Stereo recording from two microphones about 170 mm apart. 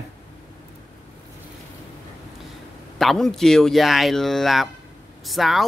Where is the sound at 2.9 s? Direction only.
Centre (ahead or behind).